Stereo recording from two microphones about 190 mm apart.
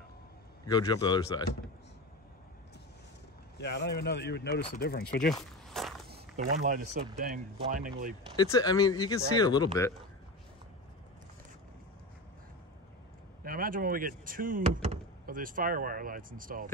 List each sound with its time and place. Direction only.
0.7 s speech: 20° left (ahead or behind)
3.5 s speech: 65° left (ahead or behind)
5.7 s walk: centre (ahead or behind)
6.3 s speech: 40° right (ahead or behind)
8.4 s speech: 20° left (ahead or behind)
13.4 s speech: 50° right (ahead or behind)